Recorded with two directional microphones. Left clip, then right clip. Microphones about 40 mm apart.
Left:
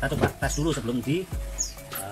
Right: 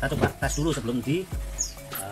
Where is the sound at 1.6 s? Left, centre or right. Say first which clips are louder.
Even; centre.